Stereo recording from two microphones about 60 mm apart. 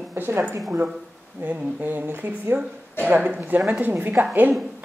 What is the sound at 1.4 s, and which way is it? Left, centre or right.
Speech, right.